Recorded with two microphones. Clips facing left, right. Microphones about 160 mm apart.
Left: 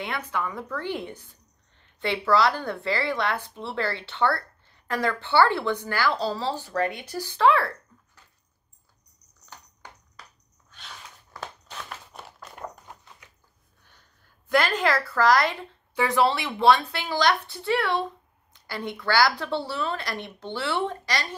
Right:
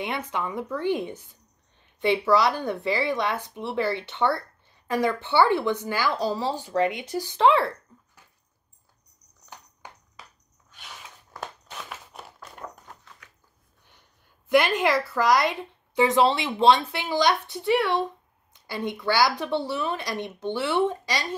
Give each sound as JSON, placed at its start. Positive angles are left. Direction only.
{"t": 0.0, "sound": "a woman's voice", "side_deg": -20}
{"t": 9.5, "sound": "a sound", "side_deg": -15}
{"t": 13.8, "sound": "a woman's voice", "side_deg": -20}